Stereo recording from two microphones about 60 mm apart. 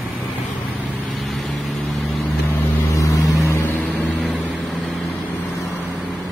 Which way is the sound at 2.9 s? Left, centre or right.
Left.